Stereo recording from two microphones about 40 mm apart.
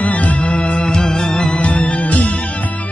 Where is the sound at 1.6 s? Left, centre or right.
Left.